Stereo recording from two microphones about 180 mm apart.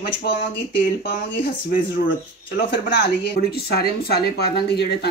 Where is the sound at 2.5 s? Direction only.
60° left (ahead or behind).